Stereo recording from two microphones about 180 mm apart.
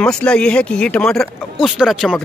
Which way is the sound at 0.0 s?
5° left (ahead or behind).